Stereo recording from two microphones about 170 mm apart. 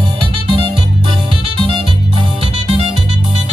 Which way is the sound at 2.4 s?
35° right (ahead or behind).